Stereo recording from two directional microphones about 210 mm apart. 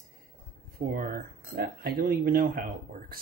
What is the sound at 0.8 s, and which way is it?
Speech, 40° right (ahead or behind).